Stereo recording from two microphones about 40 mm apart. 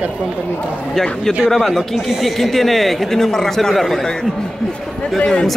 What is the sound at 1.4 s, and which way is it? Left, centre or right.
Speech, centre.